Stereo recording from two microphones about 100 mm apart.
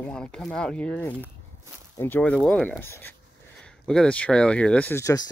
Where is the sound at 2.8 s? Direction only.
25° left (ahead or behind).